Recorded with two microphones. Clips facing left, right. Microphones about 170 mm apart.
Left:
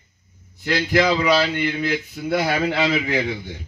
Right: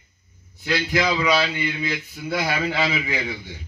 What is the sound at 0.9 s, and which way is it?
A man's voice, 50° left (ahead or behind).